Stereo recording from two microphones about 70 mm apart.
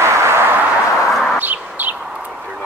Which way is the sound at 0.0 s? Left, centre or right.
Right.